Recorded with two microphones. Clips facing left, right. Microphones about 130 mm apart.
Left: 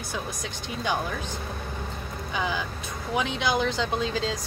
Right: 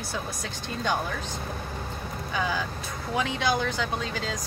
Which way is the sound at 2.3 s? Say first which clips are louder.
Even; 20° left (ahead or behind).